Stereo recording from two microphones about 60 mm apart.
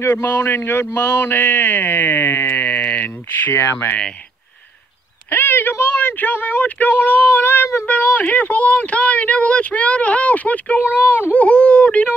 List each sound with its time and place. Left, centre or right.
0.0 s speech: left
5.3 s speech: left
7.8 s speech: left
11.3 s speech: left